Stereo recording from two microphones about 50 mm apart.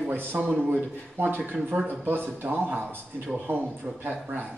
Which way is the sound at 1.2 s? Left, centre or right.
Right.